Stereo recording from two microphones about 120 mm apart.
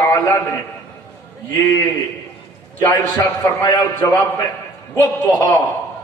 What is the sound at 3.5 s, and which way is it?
A man's voice, 30° left (ahead or behind).